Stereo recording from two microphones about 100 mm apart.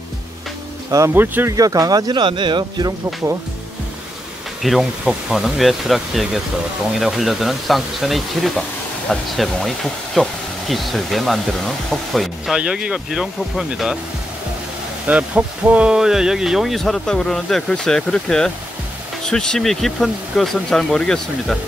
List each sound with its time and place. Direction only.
0.9 s speech: 25° right (ahead or behind)
1.5 s speech: 35° right (ahead or behind); by 2.9 s 55° right (ahead or behind)
3.2 s speech: 25° right (ahead or behind)
4.6 s speech: centre (ahead or behind)
15.0 s speech: 15° right (ahead or behind); by 21.5 s 5° left (ahead or behind)